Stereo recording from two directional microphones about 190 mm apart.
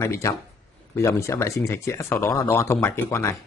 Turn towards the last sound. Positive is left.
turn(degrees=15)  # may be behind; listen again after turning